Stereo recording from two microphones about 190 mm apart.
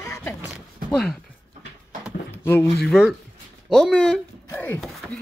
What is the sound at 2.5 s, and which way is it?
Speech, 10° left (ahead or behind).